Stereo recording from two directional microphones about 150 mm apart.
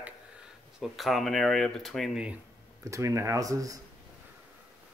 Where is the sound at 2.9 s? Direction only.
20° right (ahead or behind).